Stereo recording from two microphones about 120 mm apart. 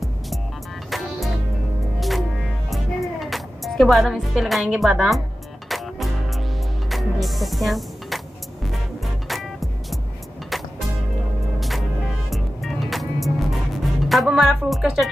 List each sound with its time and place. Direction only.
0.8 s music: centre (ahead or behind)
9.3 s music: centre (ahead or behind)
12.3 s music: centre (ahead or behind)
14.0 s speech: centre (ahead or behind)